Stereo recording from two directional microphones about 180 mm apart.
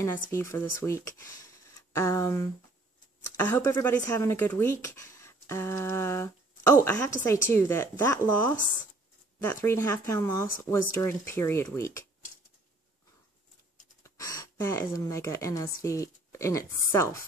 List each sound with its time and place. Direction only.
0.3 s speech: 15° left (ahead or behind)
14.0 s speech: 20° left (ahead or behind)